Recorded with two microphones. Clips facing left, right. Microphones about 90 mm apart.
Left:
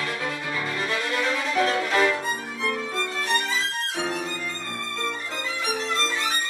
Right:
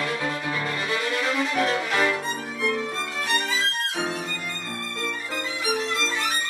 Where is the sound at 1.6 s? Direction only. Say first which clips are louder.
Left 4 dB; centre (ahead or behind).